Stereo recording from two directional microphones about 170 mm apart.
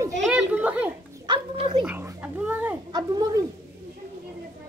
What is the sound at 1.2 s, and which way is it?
Dog, 25° right (ahead or behind).